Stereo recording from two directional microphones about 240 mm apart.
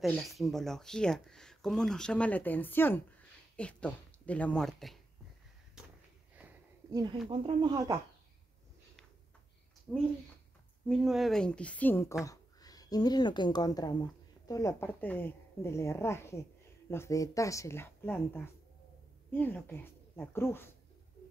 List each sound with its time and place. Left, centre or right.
0.0 s speech: centre
5.8 s a sound: centre
7.2 s speech: centre
9.9 s a woman's voice: centre